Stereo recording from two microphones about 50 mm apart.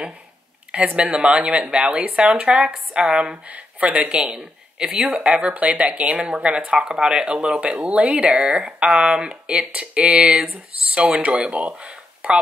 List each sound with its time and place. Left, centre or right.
0.7 s speech: right
5.1 s speech: right
7.6 s speech: right